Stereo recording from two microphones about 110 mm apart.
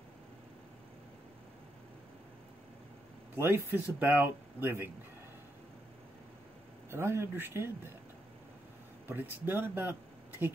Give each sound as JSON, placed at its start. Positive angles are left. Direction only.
{"t": 3.3, "sound": "speech", "side_deg": -20}
{"t": 6.9, "sound": "speech", "side_deg": -20}
{"t": 9.1, "sound": "speech", "side_deg": -20}